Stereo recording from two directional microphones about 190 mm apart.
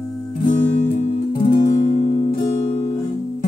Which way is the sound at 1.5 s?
45° left (ahead or behind).